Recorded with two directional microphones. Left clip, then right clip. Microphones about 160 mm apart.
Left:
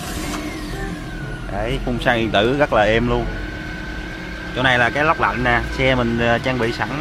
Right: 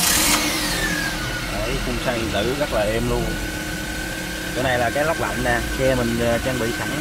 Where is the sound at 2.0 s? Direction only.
15° left (ahead or behind).